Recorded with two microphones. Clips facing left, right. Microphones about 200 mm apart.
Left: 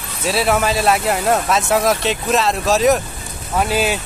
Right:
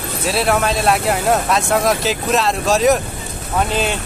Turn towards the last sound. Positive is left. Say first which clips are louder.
# left 1 dB
turn(degrees=5)  # may be behind; listen again after turning